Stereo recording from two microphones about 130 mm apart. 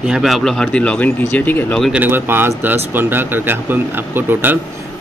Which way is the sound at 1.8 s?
10° right (ahead or behind).